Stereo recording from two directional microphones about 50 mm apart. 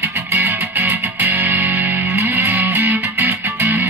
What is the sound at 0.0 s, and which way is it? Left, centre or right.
Music, right.